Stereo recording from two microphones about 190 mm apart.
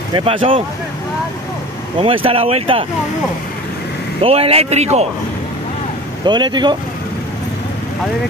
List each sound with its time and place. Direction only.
0.1 s speech: 30° right (ahead or behind)
2.0 s speech: 30° right (ahead or behind)
4.2 s a man's voice: 30° right (ahead or behind)
6.2 s speech: 25° right (ahead or behind)